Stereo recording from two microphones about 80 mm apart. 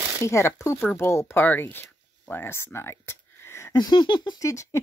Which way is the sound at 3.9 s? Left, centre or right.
Left.